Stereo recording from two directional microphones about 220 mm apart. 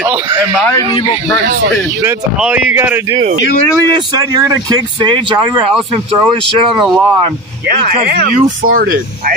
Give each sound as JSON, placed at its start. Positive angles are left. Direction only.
{"t": 2.0, "sound": "speech", "side_deg": -10}
{"t": 7.6, "sound": "speech", "side_deg": -45}